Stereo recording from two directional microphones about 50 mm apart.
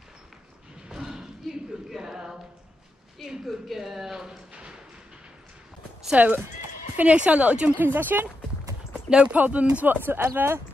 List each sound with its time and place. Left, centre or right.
0.8 s a sound: centre
3.4 s speech: centre
6.1 s a woman's voice: right
7.8 s speech: right
8.9 s speech: right
9.8 s speech: right